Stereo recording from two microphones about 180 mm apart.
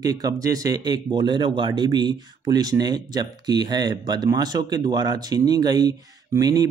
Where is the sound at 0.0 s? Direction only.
20° right (ahead or behind).